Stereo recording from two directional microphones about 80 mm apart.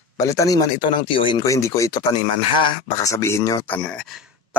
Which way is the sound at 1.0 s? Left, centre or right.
Left.